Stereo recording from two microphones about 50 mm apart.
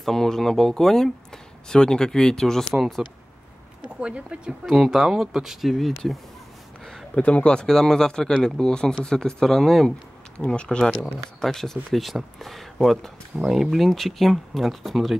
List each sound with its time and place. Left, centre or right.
0.0 s speech: centre
2.7 s speech: centre
4.0 s speech: right
4.6 s speech: centre
7.2 s speech: left; by 9.9 s centre
10.3 s speech: left; by 15.1 s centre